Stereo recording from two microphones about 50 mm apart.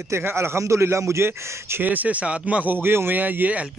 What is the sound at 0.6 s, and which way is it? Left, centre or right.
Speech, right.